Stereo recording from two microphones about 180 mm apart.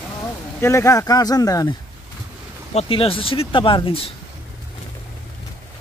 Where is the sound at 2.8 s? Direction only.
30° left (ahead or behind).